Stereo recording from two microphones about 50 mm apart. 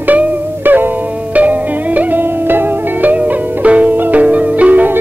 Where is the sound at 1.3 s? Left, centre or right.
Right.